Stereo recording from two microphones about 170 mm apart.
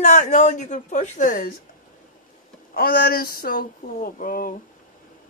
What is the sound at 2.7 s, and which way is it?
Speech, 60° left (ahead or behind).